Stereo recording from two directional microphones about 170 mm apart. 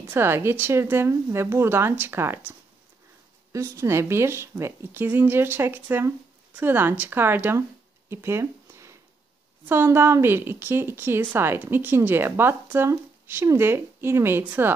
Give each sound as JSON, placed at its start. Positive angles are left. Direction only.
{"t": 0.1, "sound": "a woman's voice", "side_deg": -15}
{"t": 3.5, "sound": "a woman's voice", "side_deg": -15}
{"t": 8.1, "sound": "a sound", "side_deg": -15}
{"t": 9.7, "sound": "a woman's voice", "side_deg": -15}